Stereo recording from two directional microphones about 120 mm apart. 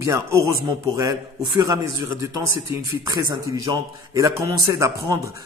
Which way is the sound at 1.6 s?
30° right (ahead or behind).